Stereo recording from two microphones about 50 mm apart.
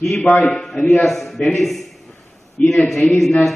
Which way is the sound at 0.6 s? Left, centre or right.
Centre.